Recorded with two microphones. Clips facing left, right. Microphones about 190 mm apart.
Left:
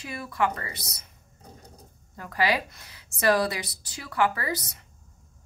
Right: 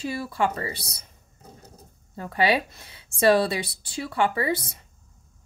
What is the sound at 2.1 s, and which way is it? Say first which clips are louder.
Speech: right 3 dB; 25° right (ahead or behind).